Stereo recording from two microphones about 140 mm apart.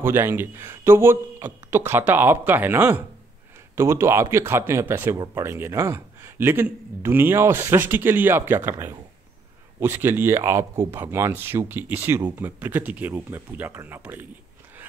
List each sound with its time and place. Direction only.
0.0 s a man's voice: 15° right (ahead or behind)